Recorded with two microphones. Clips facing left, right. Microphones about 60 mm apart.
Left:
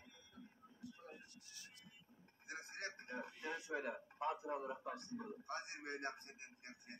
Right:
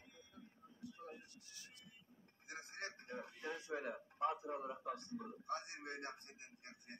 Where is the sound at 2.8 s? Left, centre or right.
Left.